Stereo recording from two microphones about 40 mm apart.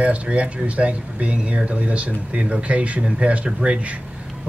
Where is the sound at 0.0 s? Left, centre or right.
Right.